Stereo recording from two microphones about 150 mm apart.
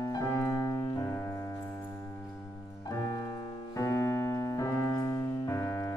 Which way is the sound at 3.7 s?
20° left (ahead or behind).